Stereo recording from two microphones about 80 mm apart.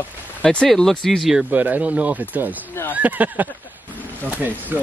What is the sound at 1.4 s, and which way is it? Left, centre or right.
Speech, right.